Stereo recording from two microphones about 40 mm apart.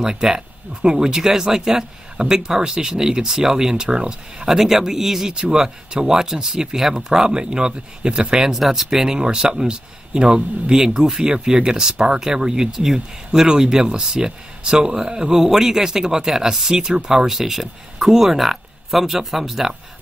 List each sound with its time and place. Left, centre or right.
0.0 s speech: centre
4.5 s speech: centre